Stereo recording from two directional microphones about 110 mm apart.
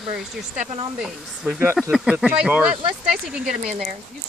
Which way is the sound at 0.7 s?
55° right (ahead or behind).